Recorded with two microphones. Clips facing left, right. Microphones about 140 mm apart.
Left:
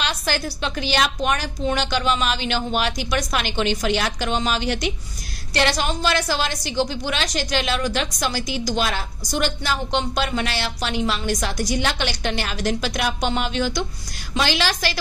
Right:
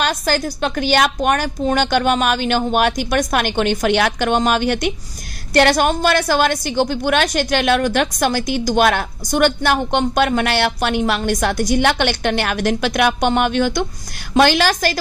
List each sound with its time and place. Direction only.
0.0 s a woman's voice: 45° right (ahead or behind)